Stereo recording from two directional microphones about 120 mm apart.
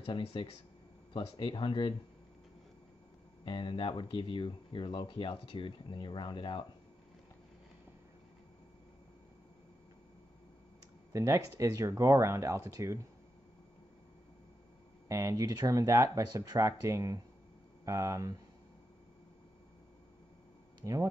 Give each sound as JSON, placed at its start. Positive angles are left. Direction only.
{"t": 0.0, "sound": "speech", "side_deg": 50}
{"t": 3.4, "sound": "speech", "side_deg": 45}
{"t": 11.1, "sound": "speech", "side_deg": -25}
{"t": 15.0, "sound": "speech", "side_deg": -25}
{"t": 20.8, "sound": "speech", "side_deg": -30}